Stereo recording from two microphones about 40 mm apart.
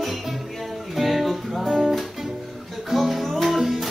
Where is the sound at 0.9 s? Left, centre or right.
Centre.